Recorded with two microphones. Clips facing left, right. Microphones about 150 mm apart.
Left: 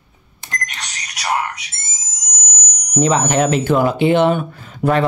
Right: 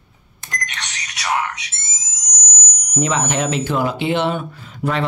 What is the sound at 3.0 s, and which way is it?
Speech, 35° left (ahead or behind).